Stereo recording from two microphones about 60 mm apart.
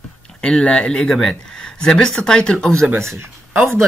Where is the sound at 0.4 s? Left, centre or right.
Centre.